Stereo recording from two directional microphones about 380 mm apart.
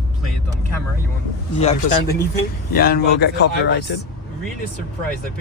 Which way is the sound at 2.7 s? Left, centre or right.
Left.